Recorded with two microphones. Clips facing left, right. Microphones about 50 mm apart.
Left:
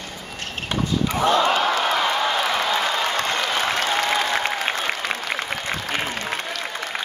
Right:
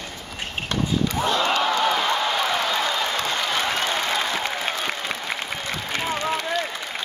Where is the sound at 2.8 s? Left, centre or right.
Left.